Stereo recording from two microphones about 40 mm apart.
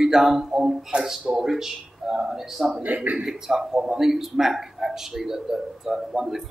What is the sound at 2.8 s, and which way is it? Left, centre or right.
Speech, right.